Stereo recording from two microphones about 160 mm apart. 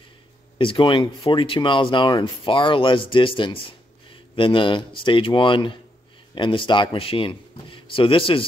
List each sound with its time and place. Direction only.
0.6 s speech: 30° left (ahead or behind)